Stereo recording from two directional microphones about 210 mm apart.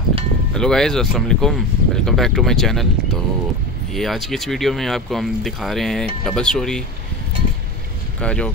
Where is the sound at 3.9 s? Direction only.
Centre (ahead or behind).